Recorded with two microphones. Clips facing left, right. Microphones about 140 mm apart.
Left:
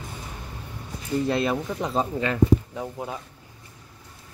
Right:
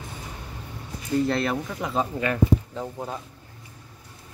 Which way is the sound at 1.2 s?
10° left (ahead or behind).